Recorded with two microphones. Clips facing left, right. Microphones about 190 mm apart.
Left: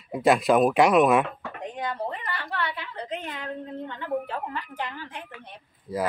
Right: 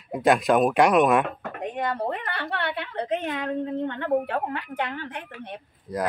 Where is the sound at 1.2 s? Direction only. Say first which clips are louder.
Right 3 dB; 55° right (ahead or behind).